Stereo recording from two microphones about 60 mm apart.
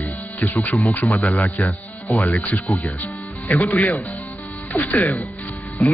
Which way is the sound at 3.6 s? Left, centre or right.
Left.